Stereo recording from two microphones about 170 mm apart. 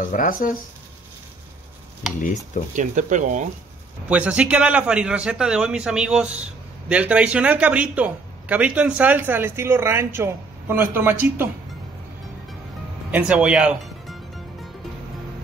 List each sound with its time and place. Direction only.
0.0 s speech: 50° left (ahead or behind)
2.7 s speech: 45° right (ahead or behind)
4.1 s speech: 10° right (ahead or behind)
13.1 s music: 5° right (ahead or behind)